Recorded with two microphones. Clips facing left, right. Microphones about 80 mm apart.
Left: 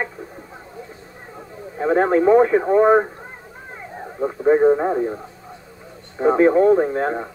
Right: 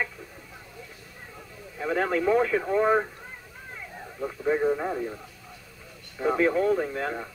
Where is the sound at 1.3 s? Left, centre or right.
Left.